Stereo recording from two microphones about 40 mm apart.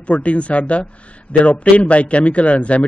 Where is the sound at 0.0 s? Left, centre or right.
Left.